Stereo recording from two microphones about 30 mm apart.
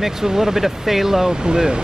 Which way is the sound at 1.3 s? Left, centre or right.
Right.